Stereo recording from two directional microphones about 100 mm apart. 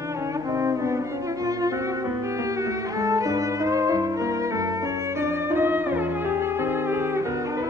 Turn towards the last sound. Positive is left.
turn(degrees=-25)  # may be behind; listen again after turning